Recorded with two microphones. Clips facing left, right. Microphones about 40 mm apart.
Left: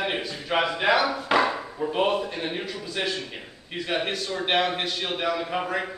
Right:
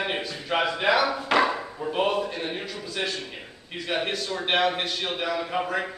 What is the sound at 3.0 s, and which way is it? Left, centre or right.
Speech, centre.